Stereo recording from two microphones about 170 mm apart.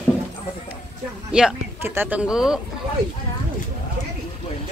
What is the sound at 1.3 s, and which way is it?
Speech, 5° right (ahead or behind).